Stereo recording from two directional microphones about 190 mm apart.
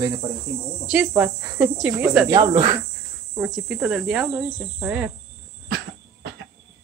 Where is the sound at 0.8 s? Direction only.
5° right (ahead or behind).